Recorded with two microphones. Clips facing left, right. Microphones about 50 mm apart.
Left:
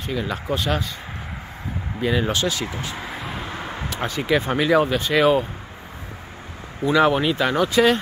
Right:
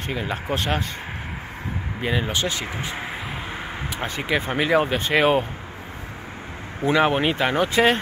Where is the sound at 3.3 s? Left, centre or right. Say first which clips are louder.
Left 1 dB; centre.